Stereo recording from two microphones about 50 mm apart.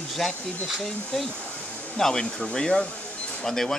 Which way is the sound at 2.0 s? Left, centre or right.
Centre.